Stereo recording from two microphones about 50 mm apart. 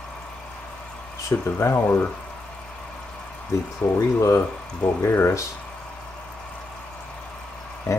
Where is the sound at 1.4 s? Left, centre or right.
Left.